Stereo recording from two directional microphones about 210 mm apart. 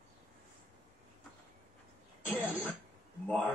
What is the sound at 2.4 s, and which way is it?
Throat clearing, 5° right (ahead or behind).